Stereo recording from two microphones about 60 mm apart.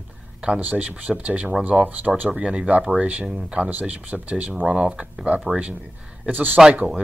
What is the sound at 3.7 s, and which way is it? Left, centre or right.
Speech, right.